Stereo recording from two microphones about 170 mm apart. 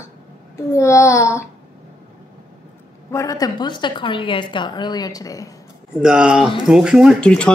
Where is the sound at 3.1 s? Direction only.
20° left (ahead or behind).